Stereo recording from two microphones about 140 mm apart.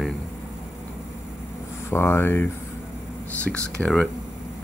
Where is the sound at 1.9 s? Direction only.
15° left (ahead or behind).